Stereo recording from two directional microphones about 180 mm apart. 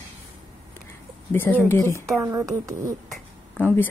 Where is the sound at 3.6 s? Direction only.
10° left (ahead or behind).